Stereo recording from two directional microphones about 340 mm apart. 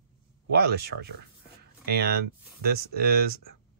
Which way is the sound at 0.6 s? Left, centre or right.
Right.